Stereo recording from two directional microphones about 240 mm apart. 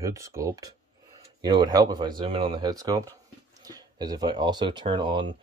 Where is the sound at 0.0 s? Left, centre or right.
Centre.